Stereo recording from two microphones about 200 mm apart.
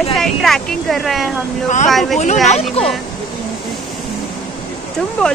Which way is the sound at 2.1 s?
35° left (ahead or behind).